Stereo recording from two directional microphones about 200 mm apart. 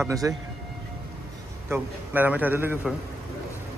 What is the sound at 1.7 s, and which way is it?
A man's voice, 10° right (ahead or behind).